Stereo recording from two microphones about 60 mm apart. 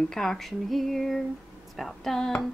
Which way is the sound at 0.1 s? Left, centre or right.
Centre.